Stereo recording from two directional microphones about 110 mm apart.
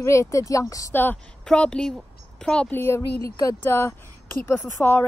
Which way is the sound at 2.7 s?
25° left (ahead or behind).